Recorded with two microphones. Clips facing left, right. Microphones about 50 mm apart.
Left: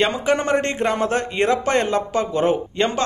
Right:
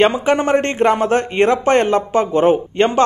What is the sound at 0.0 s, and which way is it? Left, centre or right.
Speech, right.